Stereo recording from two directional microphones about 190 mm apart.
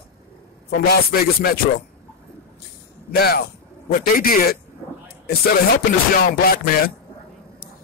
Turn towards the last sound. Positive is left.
turn(degrees=50)  # may be behind; listen again after turning